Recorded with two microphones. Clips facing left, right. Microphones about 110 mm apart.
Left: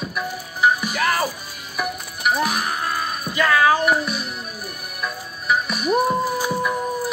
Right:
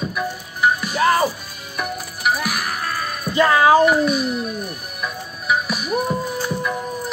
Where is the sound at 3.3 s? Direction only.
25° right (ahead or behind).